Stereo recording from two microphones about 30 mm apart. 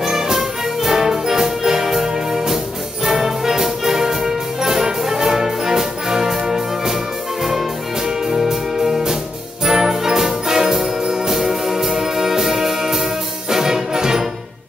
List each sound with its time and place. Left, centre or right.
0.0 s music: centre
8.3 s music: centre
9.7 s jingle bell: centre
13.5 s music: centre